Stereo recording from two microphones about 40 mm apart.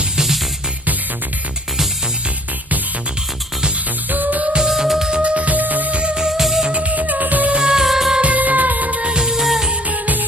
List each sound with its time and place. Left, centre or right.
4.1 s music: right
4.6 s music: centre
5.2 s music: right
6.1 s music: centre
6.7 s music: right
7.5 s music: right
7.8 s music: centre
8.2 s music: right
9.0 s music: right
9.8 s music: right